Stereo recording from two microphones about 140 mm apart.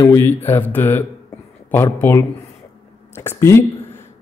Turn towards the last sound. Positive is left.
turn(degrees=20)  # may be behind; listen again after turning